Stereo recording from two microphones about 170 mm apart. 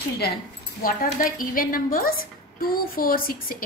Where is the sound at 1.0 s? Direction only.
55° left (ahead or behind).